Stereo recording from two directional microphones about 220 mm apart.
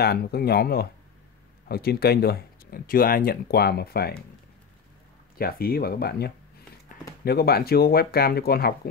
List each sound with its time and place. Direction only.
0.0 s speech: 45° left (ahead or behind)
5.4 s speech: 45° left (ahead or behind)